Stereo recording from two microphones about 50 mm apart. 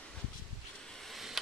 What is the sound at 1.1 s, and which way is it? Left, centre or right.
Tick, centre.